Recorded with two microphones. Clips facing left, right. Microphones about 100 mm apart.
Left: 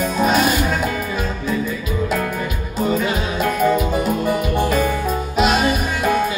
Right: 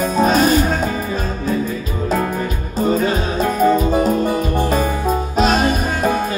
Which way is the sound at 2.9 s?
35° right (ahead or behind).